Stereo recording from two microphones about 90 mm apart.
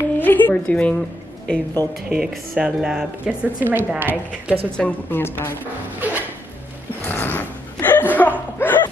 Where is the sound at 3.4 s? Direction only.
25° right (ahead or behind).